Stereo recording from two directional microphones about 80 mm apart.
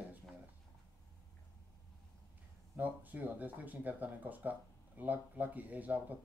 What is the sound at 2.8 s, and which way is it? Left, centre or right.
Speech, right.